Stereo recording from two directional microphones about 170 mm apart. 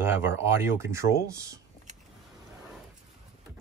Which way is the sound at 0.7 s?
15° right (ahead or behind).